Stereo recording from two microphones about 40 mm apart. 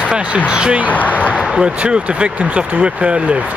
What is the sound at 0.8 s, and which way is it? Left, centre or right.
Speech, left.